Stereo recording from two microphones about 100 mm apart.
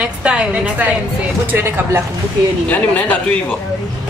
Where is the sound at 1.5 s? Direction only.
20° right (ahead or behind).